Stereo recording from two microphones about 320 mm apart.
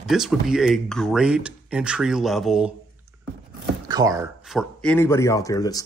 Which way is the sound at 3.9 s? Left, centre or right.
Centre.